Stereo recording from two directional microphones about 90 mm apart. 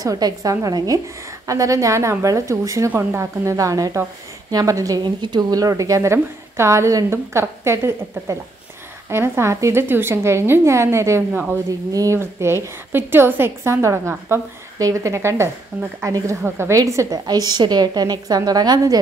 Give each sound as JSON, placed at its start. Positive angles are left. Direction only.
{"t": 0.0, "sound": "a woman's voice", "side_deg": -40}
{"t": 2.9, "sound": "a woman's voice", "side_deg": -20}
{"t": 3.2, "sound": "a woman's voice", "side_deg": -35}
{"t": 5.0, "sound": "a woman's voice", "side_deg": -55}
{"t": 11.9, "sound": "a woman's voice", "side_deg": -35}